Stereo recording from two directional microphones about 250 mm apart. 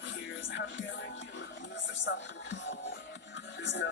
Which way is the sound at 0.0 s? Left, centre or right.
Left.